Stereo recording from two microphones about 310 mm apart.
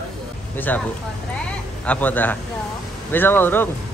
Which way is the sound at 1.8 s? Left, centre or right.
Centre.